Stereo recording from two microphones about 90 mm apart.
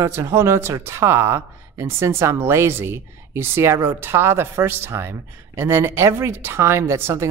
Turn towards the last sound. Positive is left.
turn(degrees=-30)  # may be behind; listen again after turning